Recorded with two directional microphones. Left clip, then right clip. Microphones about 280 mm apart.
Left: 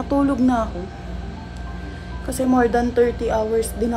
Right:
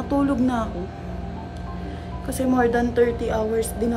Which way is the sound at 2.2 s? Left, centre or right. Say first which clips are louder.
Left 2 dB; centre.